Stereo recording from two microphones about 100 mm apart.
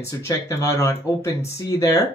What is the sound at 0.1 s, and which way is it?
Speech, 30° left (ahead or behind).